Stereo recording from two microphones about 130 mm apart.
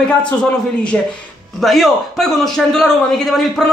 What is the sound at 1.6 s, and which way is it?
A man's voice, centre (ahead or behind).